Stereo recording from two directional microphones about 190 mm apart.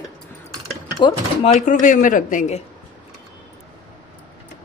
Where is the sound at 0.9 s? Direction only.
25° left (ahead or behind).